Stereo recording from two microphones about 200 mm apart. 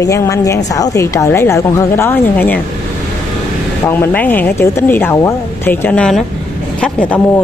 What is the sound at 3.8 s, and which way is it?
Speech, 10° left (ahead or behind).